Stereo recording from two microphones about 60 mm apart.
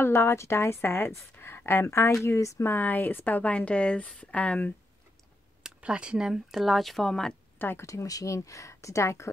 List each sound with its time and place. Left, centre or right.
0.0 s a woman's voice: left
2.6 s speech: left
5.6 s speech: centre
7.5 s speech: left
7.8 s speech: left